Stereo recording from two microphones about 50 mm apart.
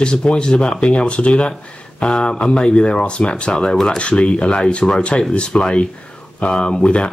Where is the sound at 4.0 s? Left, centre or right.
Left.